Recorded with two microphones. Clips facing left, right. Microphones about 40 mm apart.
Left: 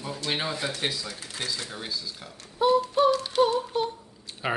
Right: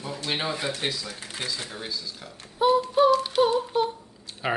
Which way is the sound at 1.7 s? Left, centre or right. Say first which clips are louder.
Even; centre.